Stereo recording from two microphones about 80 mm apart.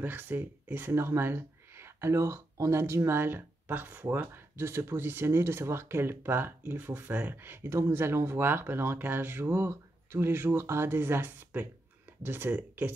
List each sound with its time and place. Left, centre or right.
0.0 s speech: right